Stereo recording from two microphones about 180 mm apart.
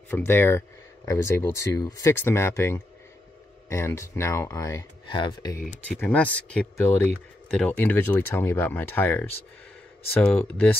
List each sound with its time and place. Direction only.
0.1 s speech: 10° left (ahead or behind)
5.9 s speech: 10° left (ahead or behind)